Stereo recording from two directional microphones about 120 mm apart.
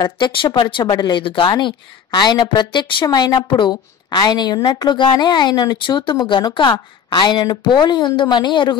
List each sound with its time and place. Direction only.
0.0 s a woman's voice: 40° left (ahead or behind)